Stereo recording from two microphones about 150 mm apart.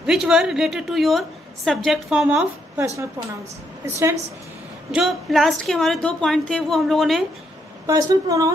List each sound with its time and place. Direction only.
0.0 s a woman's voice: 5° right (ahead or behind)
3.8 s a woman's voice: 20° right (ahead or behind)
4.9 s a woman's voice: centre (ahead or behind)
7.8 s a woman's voice: 20° right (ahead or behind)